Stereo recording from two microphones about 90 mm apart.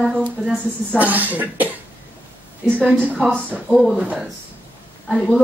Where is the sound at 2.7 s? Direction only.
15° right (ahead or behind).